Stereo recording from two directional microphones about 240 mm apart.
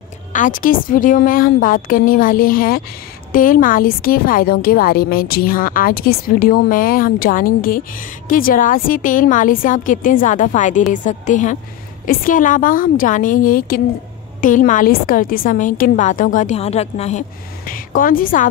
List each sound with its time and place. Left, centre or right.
0.3 s a woman's voice: left